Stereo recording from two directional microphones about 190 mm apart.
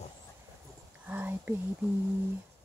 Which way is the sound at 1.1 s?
10° right (ahead or behind).